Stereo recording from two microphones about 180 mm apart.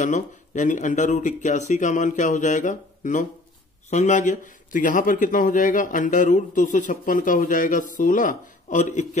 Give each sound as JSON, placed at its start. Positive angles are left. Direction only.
{"t": 0.0, "sound": "speech", "side_deg": 45}